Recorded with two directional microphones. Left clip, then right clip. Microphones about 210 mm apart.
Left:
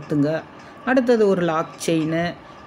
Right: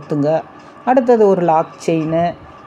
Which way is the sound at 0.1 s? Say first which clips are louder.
Right 6 dB; centre (ahead or behind).